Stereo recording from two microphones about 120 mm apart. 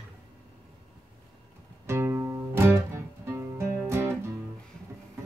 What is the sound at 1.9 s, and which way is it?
Music, 25° right (ahead or behind).